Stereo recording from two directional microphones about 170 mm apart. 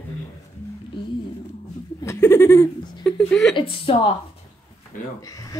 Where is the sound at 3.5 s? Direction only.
30° left (ahead or behind).